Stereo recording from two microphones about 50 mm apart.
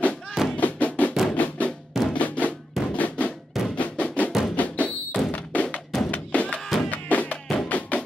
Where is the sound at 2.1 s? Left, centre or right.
Left.